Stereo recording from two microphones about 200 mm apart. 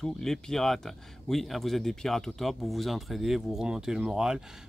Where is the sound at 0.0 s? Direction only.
Centre (ahead or behind).